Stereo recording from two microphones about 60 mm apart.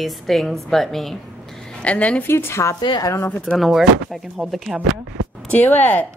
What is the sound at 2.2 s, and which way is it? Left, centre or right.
Speech, left.